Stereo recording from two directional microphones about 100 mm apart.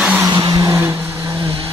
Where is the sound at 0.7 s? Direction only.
25° right (ahead or behind).